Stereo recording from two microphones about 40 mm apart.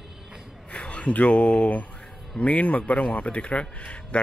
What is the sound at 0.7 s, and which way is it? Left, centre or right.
A man's voice, left.